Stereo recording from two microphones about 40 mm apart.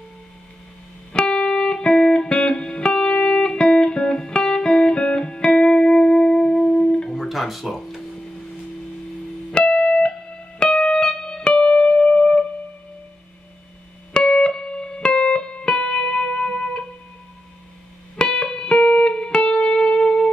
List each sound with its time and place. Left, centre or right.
1.1 s music: left
7.1 s music: centre
9.5 s music: left
14.1 s music: left
18.1 s music: left